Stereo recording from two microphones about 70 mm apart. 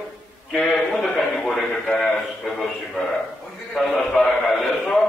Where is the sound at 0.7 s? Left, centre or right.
Centre.